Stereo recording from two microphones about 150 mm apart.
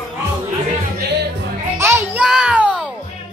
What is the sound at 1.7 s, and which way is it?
Music, 15° right (ahead or behind).